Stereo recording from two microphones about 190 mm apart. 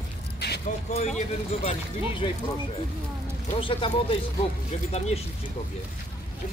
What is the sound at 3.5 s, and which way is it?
Speech, 30° left (ahead or behind).